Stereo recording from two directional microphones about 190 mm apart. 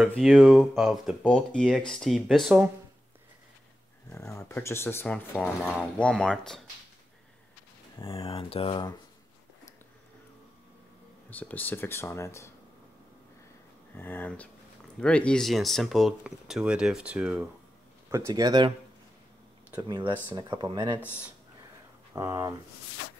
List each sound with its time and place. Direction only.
0.1 s speech: centre (ahead or behind)
4.1 s speech: 15° left (ahead or behind)
8.0 s speech: 30° left (ahead or behind)
11.2 s speech: 10° left (ahead or behind)
13.9 s speech: 10° left (ahead or behind); by 17.5 s 5° right (ahead or behind)
18.1 s speech: 20° right (ahead or behind)
20.3 s speech: 25° right (ahead or behind)
22.1 s speech: 15° right (ahead or behind)